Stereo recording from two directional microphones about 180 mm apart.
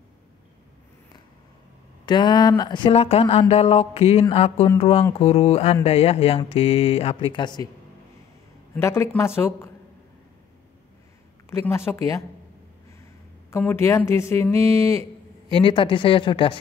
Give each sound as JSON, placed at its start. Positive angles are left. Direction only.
{"t": 2.0, "sound": "speech", "side_deg": 25}
{"t": 8.7, "sound": "a woman's voice", "side_deg": 15}
{"t": 11.5, "sound": "a woman's voice", "side_deg": 15}
{"t": 13.5, "sound": "speech", "side_deg": 15}
{"t": 15.6, "sound": "speech", "side_deg": 30}